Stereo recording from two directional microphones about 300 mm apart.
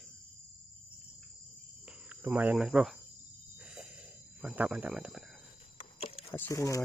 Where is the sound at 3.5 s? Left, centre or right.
Centre.